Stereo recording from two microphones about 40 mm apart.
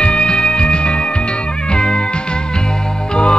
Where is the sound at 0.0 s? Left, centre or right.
Left.